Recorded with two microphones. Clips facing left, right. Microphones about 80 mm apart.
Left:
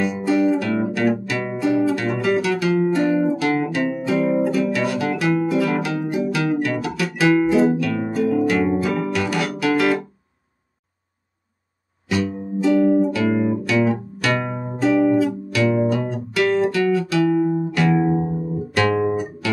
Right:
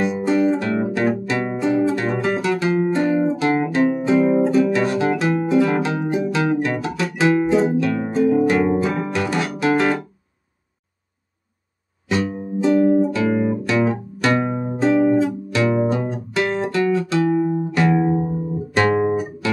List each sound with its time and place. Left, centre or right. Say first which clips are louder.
0.0 s music: right 1 dB; right
5.1 s guitar: right 1 dB; right
8.7 s music: even; right
12.1 s music: right 1 dB; right
18.8 s guitar: right 2 dB; right